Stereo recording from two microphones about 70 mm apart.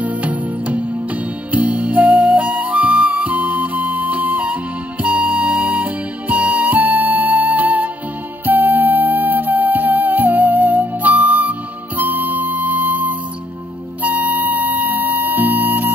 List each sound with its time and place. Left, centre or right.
0.0 s music: right